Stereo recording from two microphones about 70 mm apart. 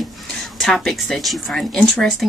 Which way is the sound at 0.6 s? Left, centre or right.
Centre.